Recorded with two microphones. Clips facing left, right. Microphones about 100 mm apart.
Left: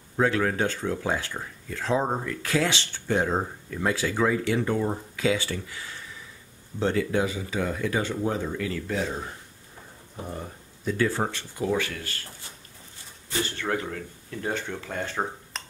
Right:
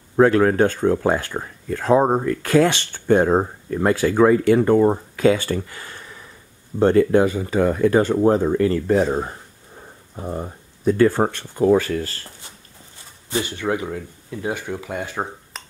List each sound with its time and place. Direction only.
0.1 s speech: 50° right (ahead or behind)
10.2 s speech: 30° right (ahead or behind)
11.0 s speech: 50° right (ahead or behind); by 12.3 s 35° right (ahead or behind)
13.3 s speech: 15° right (ahead or behind)